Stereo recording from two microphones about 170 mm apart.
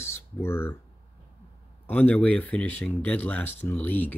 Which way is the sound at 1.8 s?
10° left (ahead or behind).